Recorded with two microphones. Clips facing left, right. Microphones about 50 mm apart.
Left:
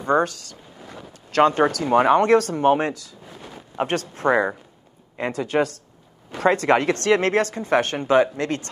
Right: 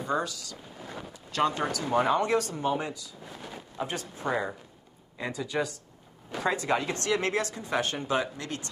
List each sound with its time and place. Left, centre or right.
0.0 s speech: left